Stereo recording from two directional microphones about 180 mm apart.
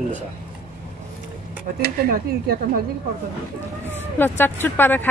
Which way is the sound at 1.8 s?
60° right (ahead or behind).